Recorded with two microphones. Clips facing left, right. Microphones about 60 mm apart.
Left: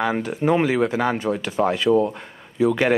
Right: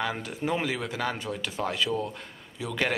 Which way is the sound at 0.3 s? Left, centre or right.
Left.